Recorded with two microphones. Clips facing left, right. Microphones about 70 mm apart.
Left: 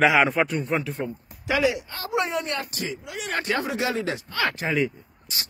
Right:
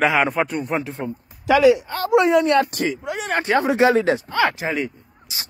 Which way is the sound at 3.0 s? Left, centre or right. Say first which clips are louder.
Right 6 dB; right.